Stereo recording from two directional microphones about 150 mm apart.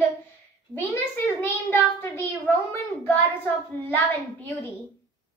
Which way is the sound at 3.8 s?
10° left (ahead or behind).